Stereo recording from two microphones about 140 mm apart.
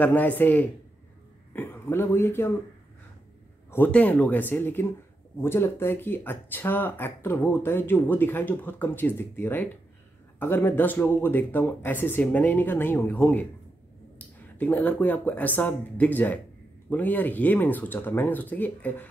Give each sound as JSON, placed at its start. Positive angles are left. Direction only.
{"t": 0.0, "sound": "a man's voice", "side_deg": 10}
{"t": 3.7, "sound": "speech", "side_deg": 10}